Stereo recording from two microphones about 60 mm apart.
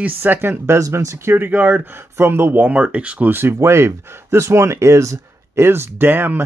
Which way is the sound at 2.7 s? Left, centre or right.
Right.